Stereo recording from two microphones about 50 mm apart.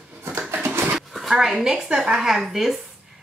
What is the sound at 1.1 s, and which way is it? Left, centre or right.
A woman's voice, centre.